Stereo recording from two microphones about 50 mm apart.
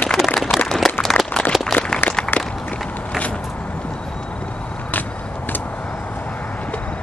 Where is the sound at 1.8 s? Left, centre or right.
Left.